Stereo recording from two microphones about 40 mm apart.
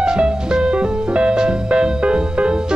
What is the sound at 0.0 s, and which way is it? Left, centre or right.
Music, right.